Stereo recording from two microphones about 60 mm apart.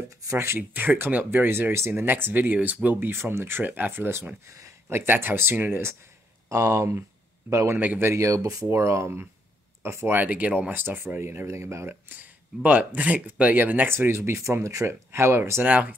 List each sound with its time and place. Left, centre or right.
0.4 s speech: right
4.5 s a sound: right
4.8 s speech: right
6.5 s speech: right
7.7 s speech: right
8.1 s speech: right
8.6 s speech: right
10.1 s speech: right
10.7 s speech: right
11.1 s speech: right
12.1 s speech: right
13.8 s speech: right
15.0 s speech: right
15.6 s speech: right